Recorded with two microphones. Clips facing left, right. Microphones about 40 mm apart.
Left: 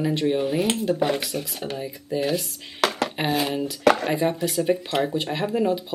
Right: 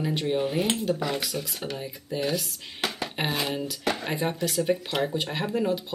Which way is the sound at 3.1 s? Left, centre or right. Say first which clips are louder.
Left 4 dB; centre.